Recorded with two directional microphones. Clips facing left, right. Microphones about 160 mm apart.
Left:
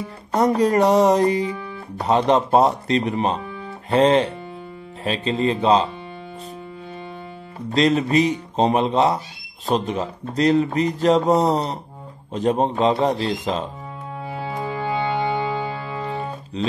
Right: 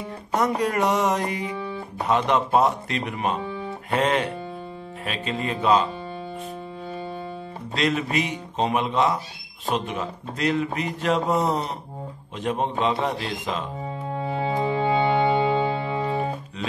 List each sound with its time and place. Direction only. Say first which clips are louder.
0.6 s speech: left 7 dB; 35° left (ahead or behind)
7.7 s speech: left 7 dB; 35° left (ahead or behind)
14.4 s music: right 3 dB; 25° right (ahead or behind)